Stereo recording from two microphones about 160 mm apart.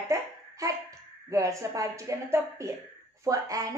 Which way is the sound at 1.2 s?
20° right (ahead or behind).